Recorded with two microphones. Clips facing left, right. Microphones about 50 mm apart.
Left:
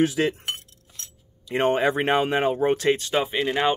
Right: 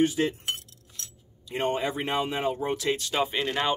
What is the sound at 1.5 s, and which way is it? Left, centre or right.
Speech, left.